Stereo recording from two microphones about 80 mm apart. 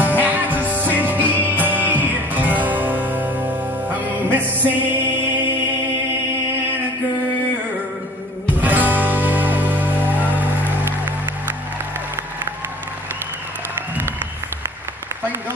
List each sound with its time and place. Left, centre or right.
0.2 s music: right
8.5 s music: right